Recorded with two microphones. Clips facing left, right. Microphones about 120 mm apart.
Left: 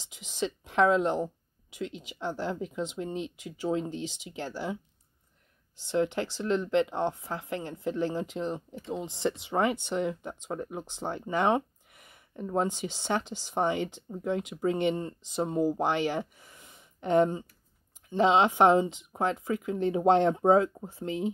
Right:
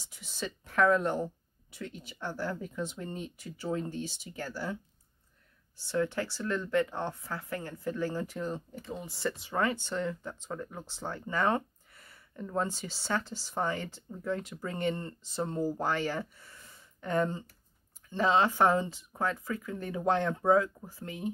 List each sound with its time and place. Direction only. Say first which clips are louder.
0.0 s a sound: left 6 dB; 15° left (ahead or behind)
2.0 s speech: left 1 dB; 15° left (ahead or behind)
5.8 s speech: left 3 dB; 20° left (ahead or behind)